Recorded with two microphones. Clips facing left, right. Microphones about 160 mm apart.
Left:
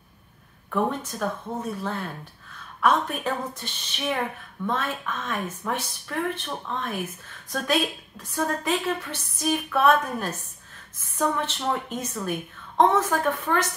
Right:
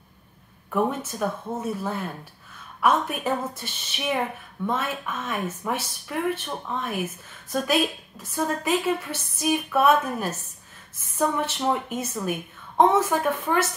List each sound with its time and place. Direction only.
0.7 s a woman's voice: 10° right (ahead or behind)